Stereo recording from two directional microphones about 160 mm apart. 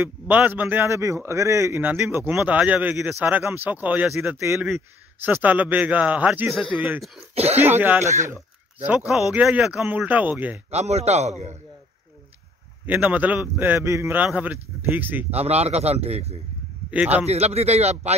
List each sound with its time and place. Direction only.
0.0 s a man's voice: 10° right (ahead or behind)
10.7 s a man's voice: 40° right (ahead or behind)
12.8 s a man's voice: 10° right (ahead or behind)
15.3 s a man's voice: 40° right (ahead or behind)
16.9 s a man's voice: 10° right (ahead or behind)
17.3 s a man's voice: 40° right (ahead or behind)